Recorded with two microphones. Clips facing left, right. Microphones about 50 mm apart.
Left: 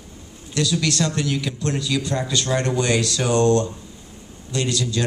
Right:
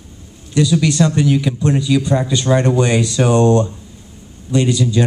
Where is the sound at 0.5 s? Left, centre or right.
Centre.